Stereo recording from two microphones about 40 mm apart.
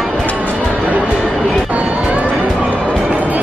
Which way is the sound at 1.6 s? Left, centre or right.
Right.